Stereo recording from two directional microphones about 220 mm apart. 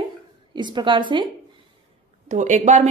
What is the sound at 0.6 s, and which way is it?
Speech, 20° right (ahead or behind).